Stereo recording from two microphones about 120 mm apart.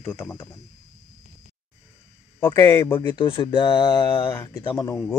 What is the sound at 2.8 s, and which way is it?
A man's voice, 40° left (ahead or behind).